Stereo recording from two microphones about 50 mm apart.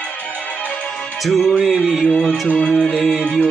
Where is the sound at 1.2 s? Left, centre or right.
Centre.